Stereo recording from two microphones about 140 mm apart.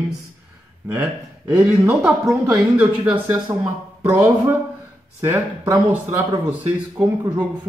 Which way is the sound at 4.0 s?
15° right (ahead or behind).